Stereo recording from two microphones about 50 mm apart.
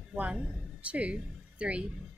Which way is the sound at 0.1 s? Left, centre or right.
Right.